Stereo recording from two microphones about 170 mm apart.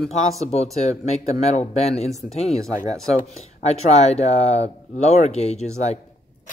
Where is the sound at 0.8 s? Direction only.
40° left (ahead or behind).